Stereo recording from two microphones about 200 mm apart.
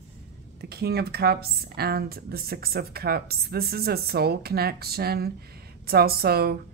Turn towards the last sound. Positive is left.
turn(degrees=-50)  # may be behind; listen again after turning